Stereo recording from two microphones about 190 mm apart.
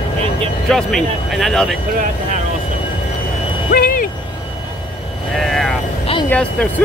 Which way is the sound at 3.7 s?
50° left (ahead or behind).